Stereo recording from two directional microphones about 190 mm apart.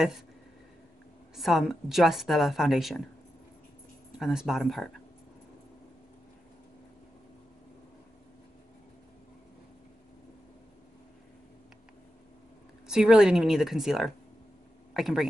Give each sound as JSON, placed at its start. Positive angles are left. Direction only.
{"t": 1.3, "sound": "a woman's voice", "side_deg": 0}
{"t": 4.2, "sound": "a woman's voice", "side_deg": -5}
{"t": 12.8, "sound": "a woman's voice", "side_deg": -5}